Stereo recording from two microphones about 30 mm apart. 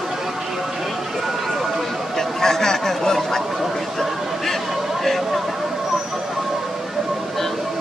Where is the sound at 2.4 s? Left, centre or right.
Centre.